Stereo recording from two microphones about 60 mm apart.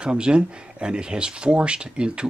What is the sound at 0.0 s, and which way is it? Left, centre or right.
Speech, centre.